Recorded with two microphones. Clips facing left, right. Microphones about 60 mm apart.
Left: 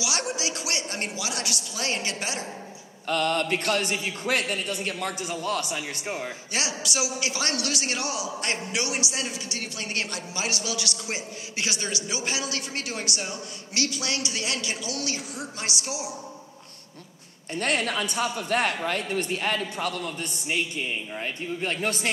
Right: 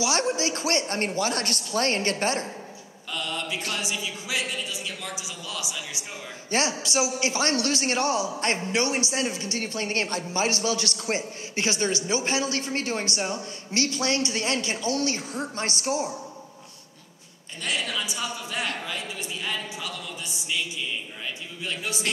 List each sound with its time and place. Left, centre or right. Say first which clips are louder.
0.0 s speech: right 5 dB; right
3.1 s a man's voice: left 7 dB; left
5.9 s a man's voice: left 6 dB; left
6.5 s speech: right 6 dB; right
17.6 s a man's voice: left 4 dB; left